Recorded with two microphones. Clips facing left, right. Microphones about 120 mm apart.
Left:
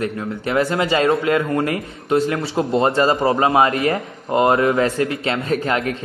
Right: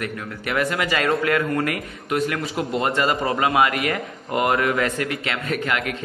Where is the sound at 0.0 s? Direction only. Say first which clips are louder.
Left 6 dB; 30° left (ahead or behind).